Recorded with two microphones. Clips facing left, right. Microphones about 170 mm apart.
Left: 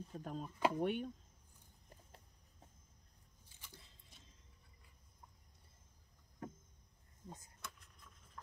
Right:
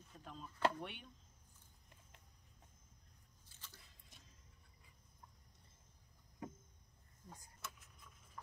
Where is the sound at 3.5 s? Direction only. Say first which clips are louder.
Left 2 dB; 15° left (ahead or behind).